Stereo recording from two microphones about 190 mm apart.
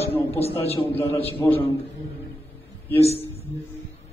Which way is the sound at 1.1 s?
10° left (ahead or behind).